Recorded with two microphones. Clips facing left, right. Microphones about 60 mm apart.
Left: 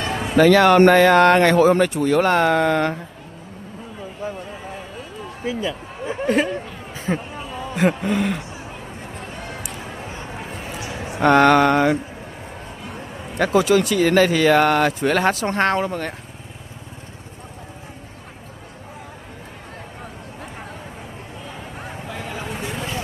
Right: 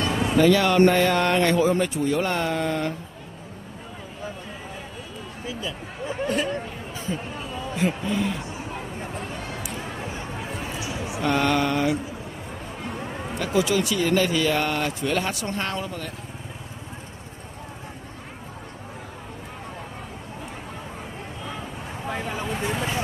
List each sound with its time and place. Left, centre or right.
0.0 s a sound: left
0.5 s speech: left
5.4 s speech: left
7.1 s speech: left
10.8 s speech: left
13.4 s speech: left
22.0 s a sound: right